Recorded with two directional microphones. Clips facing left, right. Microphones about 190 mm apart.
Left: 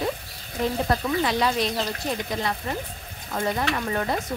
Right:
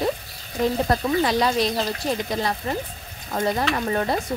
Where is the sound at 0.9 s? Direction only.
40° right (ahead or behind).